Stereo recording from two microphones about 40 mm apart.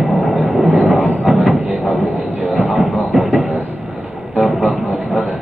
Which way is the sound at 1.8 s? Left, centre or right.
Right.